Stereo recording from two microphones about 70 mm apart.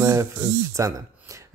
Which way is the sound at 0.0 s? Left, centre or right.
Right.